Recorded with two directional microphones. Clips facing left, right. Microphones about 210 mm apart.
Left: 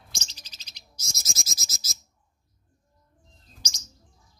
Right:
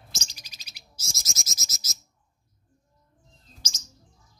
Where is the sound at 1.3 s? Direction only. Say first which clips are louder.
Left 3 dB; 30° left (ahead or behind).